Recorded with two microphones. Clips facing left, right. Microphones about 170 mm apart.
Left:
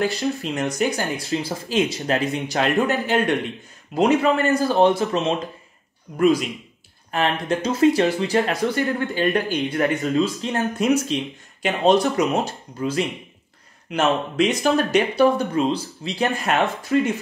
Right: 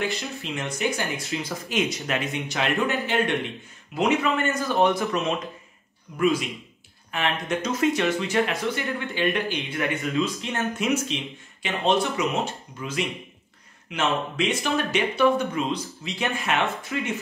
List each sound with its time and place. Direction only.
0.0 s speech: 40° left (ahead or behind)
7.1 s speech: 35° left (ahead or behind)
13.9 s speech: 40° left (ahead or behind)